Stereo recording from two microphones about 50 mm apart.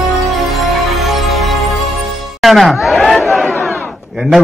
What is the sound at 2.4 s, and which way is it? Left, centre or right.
Speech, centre.